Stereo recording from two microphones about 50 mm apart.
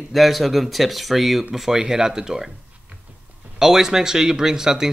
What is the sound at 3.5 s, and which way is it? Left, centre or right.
Speech, centre.